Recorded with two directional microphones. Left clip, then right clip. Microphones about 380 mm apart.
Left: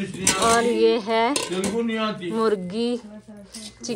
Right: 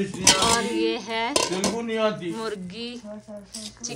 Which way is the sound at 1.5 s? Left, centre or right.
Right.